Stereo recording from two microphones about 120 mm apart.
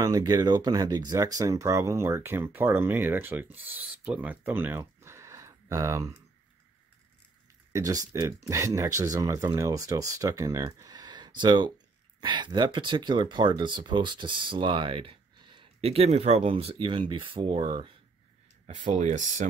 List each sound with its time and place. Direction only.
0.0 s speech: 30° right (ahead or behind)
7.7 s speech: 30° right (ahead or behind); by 16.7 s 55° right (ahead or behind)
16.7 s speech: 45° right (ahead or behind)
18.9 s speech: 90° right